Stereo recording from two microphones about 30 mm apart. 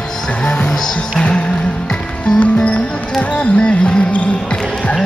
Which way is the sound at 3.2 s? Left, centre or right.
Left.